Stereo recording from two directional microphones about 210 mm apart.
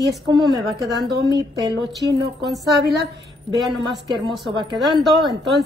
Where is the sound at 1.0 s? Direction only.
55° right (ahead or behind).